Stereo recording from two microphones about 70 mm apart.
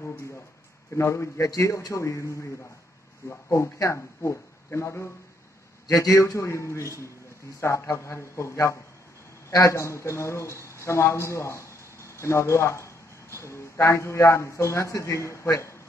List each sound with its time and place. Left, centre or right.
0.9 s a man's voice: left
1.5 s a man's voice: left